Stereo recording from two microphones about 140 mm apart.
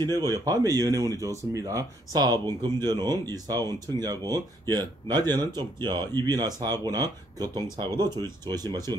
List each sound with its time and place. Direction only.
0.0 s speech: 25° right (ahead or behind)